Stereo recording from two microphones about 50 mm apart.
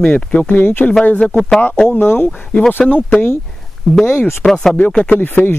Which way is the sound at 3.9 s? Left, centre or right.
Centre.